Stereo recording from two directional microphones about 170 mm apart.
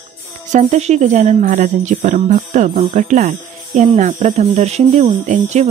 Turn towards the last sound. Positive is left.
turn(degrees=-45)  # may be behind; listen again after turning